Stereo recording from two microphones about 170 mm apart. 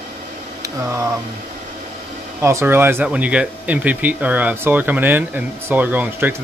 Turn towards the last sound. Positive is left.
turn(degrees=-10)  # may be behind; listen again after turning